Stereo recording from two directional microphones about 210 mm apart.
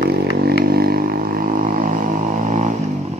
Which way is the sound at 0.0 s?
50° right (ahead or behind).